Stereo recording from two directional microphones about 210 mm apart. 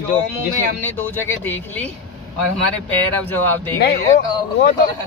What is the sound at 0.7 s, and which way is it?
Speech, 10° left (ahead or behind).